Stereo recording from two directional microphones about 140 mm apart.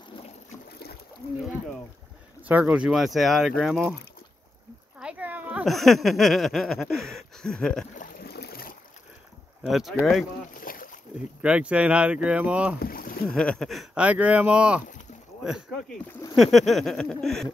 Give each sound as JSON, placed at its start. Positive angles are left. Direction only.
{"t": 1.2, "sound": "speech", "side_deg": 90}
{"t": 2.4, "sound": "speech", "side_deg": -10}
{"t": 4.9, "sound": "speech", "side_deg": -10}
{"t": 7.9, "sound": "boat", "side_deg": 80}
{"t": 9.6, "sound": "speech", "side_deg": -5}
{"t": 10.5, "sound": "boat", "side_deg": 85}
{"t": 11.4, "sound": "speech", "side_deg": -10}
{"t": 12.8, "sound": "rowboat", "side_deg": 90}
{"t": 13.3, "sound": "speech", "side_deg": 5}
{"t": 16.1, "sound": "a sound", "side_deg": 20}
{"t": 16.3, "sound": "speech", "side_deg": 0}